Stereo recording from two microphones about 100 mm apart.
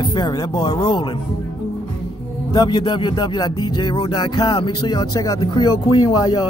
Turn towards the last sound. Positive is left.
turn(degrees=45)  # may be behind; listen again after turning